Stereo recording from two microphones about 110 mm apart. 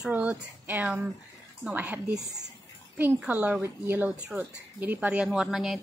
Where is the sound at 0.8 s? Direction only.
5° right (ahead or behind).